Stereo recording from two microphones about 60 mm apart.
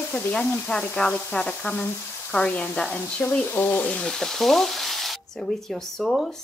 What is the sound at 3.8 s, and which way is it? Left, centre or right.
A woman's voice, centre.